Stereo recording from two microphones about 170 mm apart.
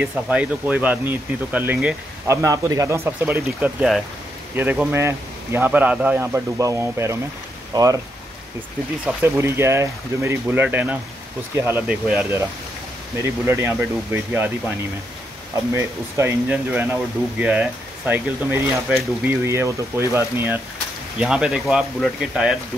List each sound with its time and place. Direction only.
0.0 s speech: 10° right (ahead or behind)
9.2 s speech: 15° right (ahead or behind)
15.7 s speech: 15° right (ahead or behind)
21.2 s speech: 5° right (ahead or behind)